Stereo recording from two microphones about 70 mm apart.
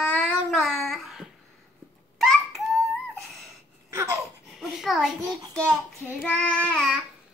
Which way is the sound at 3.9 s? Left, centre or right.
Right.